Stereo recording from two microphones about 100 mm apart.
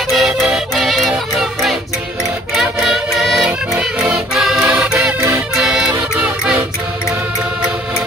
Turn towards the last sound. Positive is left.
turn(degrees=-15)  # may be behind; listen again after turning